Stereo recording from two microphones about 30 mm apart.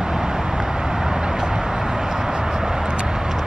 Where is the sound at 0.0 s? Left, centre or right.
Right.